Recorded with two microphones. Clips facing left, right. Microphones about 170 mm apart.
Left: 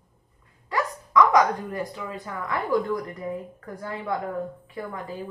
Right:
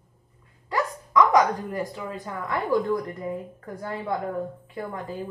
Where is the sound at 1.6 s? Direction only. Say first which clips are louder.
Right 1 dB; 20° right (ahead or behind).